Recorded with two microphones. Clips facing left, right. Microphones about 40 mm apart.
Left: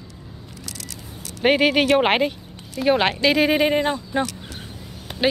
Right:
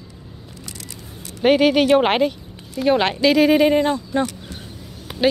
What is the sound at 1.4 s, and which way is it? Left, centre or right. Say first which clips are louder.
Speech: right 2 dB; centre.